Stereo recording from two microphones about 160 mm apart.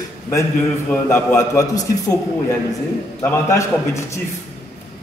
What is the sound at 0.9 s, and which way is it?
A man's voice, 15° left (ahead or behind).